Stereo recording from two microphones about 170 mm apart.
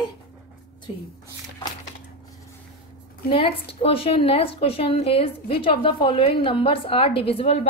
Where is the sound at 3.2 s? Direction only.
30° left (ahead or behind).